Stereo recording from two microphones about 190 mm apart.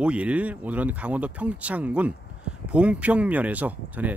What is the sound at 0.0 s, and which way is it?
Speech, 5° right (ahead or behind).